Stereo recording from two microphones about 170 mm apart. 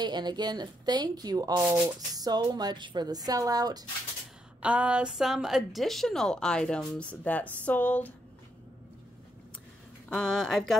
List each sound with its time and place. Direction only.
0.0 s speech: 25° right (ahead or behind)
4.6 s a woman's voice: 5° right (ahead or behind); by 8.1 s 10° left (ahead or behind)
10.0 s a woman's voice: 5° left (ahead or behind)